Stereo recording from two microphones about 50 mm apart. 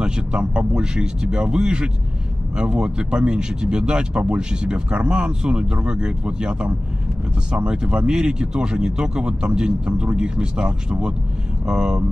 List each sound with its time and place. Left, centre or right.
0.0 s speech: right